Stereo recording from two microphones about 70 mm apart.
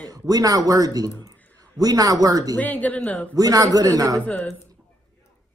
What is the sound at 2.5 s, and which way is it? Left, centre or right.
Speech, left.